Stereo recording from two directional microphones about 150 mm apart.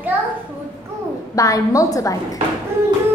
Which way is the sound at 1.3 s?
25° left (ahead or behind).